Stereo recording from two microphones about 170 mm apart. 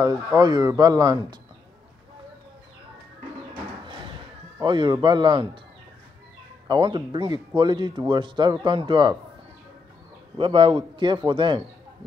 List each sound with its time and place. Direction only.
0.4 s speech: 20° right (ahead or behind)
4.6 s speech: 25° right (ahead or behind)
6.7 s speech: 25° right (ahead or behind)
10.3 s speech: 35° right (ahead or behind)